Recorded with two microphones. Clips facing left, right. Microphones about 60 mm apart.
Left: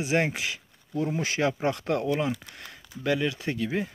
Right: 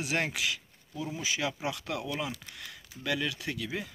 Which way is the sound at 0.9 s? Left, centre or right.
Left.